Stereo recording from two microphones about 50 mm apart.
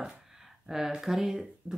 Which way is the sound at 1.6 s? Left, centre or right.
Right.